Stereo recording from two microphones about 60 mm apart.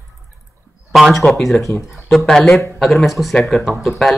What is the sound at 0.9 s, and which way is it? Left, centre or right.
Speech, centre.